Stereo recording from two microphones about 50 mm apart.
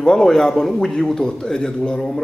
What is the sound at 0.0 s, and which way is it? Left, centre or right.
A man's voice, centre.